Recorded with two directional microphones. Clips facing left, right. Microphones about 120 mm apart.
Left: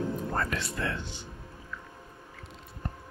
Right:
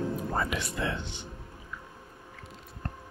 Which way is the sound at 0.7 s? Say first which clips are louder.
Right 2 dB; 20° right (ahead or behind).